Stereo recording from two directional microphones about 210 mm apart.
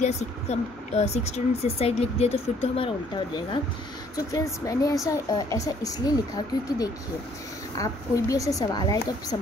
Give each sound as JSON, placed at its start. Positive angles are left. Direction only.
{"t": 0.0, "sound": "speech", "side_deg": 30}
{"t": 4.3, "sound": "speech", "side_deg": 15}